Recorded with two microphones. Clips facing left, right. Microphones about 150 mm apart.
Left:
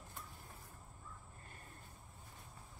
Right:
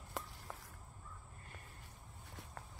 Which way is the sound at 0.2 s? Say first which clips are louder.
Right 9 dB; 90° right.